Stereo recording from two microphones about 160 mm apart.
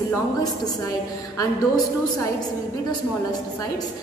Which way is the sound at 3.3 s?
25° left (ahead or behind).